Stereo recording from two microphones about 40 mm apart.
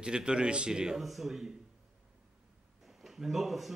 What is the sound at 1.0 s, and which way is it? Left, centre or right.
Speech, centre.